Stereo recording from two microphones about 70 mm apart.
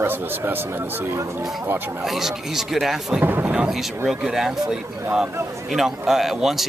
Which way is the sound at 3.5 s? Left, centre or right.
Centre.